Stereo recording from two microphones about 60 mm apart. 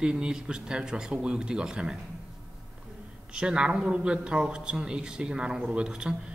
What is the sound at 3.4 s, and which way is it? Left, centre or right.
Speech, centre.